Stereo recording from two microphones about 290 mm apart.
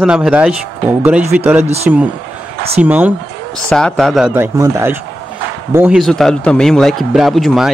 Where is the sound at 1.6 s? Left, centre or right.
Right.